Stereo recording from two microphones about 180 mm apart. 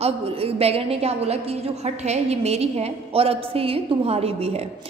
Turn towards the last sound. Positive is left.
turn(degrees=-35)  # may be behind; listen again after turning